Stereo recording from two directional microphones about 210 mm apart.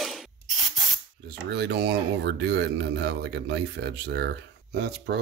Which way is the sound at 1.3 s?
55° right (ahead or behind).